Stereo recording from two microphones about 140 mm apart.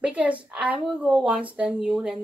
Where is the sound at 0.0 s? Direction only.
10° right (ahead or behind).